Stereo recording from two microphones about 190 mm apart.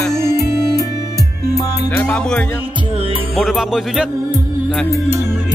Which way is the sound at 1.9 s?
5° left (ahead or behind).